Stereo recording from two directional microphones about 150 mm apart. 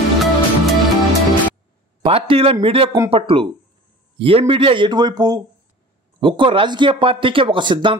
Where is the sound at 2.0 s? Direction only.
40° right (ahead or behind).